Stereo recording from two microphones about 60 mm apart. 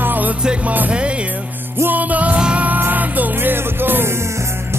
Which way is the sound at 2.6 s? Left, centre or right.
Right.